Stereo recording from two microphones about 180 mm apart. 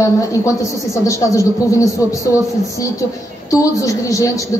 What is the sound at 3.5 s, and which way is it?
Speech, 20° left (ahead or behind).